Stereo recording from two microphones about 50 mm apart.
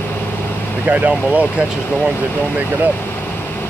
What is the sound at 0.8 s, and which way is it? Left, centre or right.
Speech, right.